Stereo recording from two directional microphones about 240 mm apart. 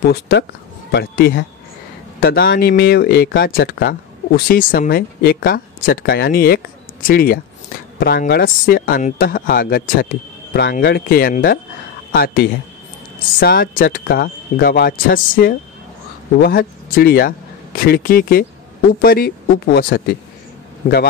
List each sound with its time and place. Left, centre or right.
0.0 s speech: left